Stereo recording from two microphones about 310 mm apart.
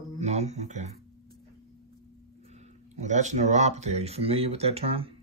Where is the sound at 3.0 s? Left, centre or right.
Right.